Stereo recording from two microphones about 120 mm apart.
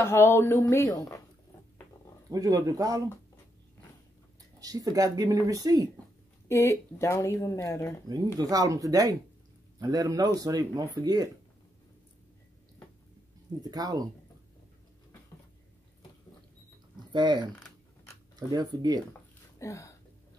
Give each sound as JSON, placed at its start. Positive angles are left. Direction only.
{"t": 0.0, "sound": "a woman's voice", "side_deg": 20}
{"t": 2.3, "sound": "speech", "side_deg": -30}
{"t": 4.6, "sound": "speech", "side_deg": -30}
{"t": 6.5, "sound": "a woman's voice", "side_deg": 20}
{"t": 8.4, "sound": "speech", "side_deg": -30}
{"t": 13.6, "sound": "speech", "side_deg": -35}
{"t": 17.1, "sound": "speech", "side_deg": -40}
{"t": 18.5, "sound": "speech", "side_deg": -35}
{"t": 19.6, "sound": "a woman's voice", "side_deg": 25}